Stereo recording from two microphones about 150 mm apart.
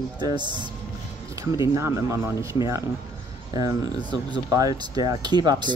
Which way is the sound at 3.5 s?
30° right (ahead or behind).